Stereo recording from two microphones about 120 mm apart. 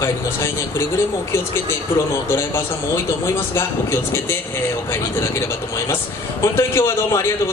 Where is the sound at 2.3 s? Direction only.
20° left (ahead or behind).